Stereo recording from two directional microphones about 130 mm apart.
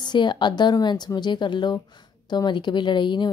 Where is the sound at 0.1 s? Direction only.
35° left (ahead or behind).